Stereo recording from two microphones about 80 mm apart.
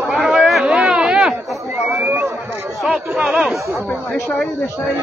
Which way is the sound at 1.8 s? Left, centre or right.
Centre.